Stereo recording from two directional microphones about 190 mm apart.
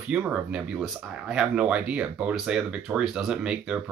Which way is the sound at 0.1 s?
5° right (ahead or behind).